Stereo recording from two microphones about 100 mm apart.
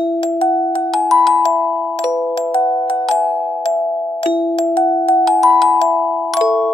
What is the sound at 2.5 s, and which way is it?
Music, 65° left (ahead or behind).